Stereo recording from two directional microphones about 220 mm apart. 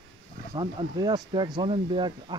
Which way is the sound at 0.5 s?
20° right (ahead or behind).